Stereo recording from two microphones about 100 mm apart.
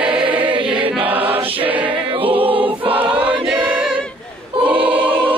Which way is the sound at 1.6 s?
15° right (ahead or behind).